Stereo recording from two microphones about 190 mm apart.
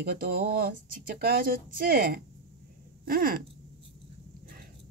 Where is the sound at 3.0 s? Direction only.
50° right (ahead or behind).